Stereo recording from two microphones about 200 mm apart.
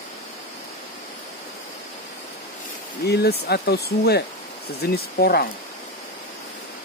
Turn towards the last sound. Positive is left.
turn(degrees=50)  # may be behind; listen again after turning